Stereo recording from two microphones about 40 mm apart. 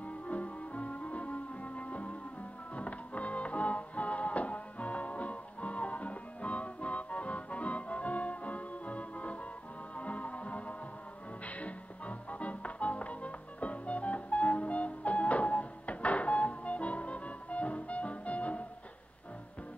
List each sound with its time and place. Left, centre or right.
0.0 s music: left